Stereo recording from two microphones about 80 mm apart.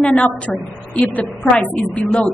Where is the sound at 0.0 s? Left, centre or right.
Centre.